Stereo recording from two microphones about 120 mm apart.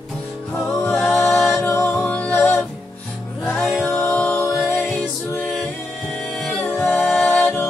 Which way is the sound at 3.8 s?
20° left (ahead or behind).